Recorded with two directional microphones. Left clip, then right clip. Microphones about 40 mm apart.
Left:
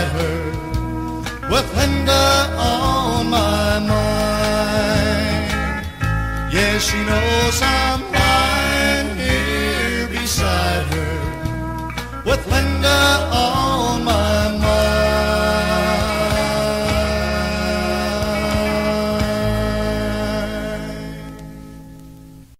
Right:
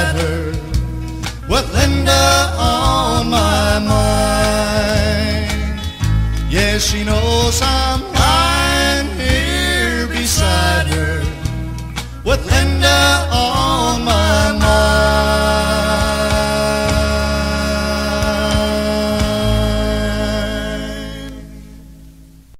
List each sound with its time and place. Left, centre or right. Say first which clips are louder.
0.0 s music: right 3 dB; right
1.5 s music: right 2 dB; right
12.3 s music: right 2 dB; right